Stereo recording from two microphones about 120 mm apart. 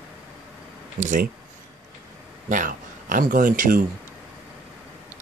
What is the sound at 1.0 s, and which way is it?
Speech, 90° right.